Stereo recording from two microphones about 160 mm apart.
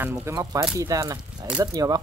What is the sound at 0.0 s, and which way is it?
Speech, 15° right (ahead or behind).